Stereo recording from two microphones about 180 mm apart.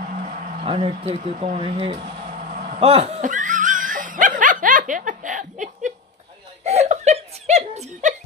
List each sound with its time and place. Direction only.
0.2 s speech: 40° right (ahead or behind)
2.5 s dog: 40° right (ahead or behind)
6.6 s chuckle: 40° right (ahead or behind)